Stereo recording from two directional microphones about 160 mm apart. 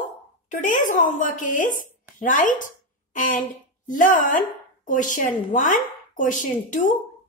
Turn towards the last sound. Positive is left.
turn(degrees=50)  # may be behind; listen again after turning